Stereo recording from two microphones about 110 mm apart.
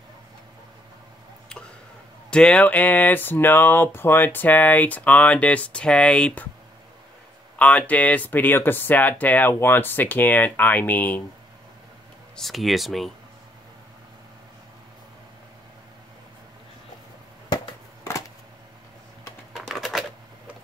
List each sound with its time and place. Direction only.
2.3 s speech: 10° left (ahead or behind)
7.5 s speech: 10° left (ahead or behind)
12.4 s speech: centre (ahead or behind)
19.5 s typing: centre (ahead or behind)